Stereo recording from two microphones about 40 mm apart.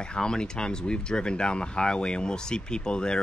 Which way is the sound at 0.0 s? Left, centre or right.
Centre.